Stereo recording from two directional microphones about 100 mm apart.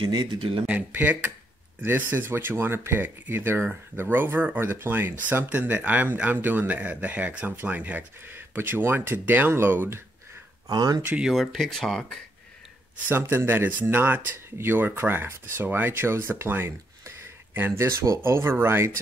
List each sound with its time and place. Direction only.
0.1 s speech: 45° right (ahead or behind)
0.4 s speech: 65° right (ahead or behind)
0.7 s speech: 15° right (ahead or behind)
10.7 s speech: 40° right (ahead or behind)
11.0 s speech: 15° right (ahead or behind)
11.2 s speech: centre (ahead or behind)
13.1 s speech: 25° right (ahead or behind)